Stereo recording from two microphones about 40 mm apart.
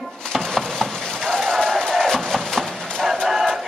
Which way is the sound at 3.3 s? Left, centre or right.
Centre.